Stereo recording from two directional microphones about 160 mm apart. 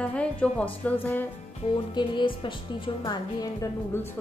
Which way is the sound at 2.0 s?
30° left (ahead or behind).